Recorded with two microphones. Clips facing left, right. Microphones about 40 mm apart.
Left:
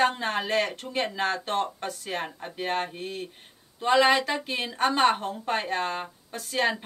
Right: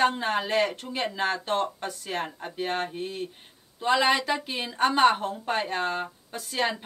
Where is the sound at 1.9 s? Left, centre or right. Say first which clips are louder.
Even; centre.